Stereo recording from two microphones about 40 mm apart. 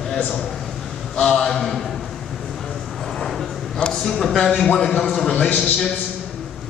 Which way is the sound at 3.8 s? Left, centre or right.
Centre.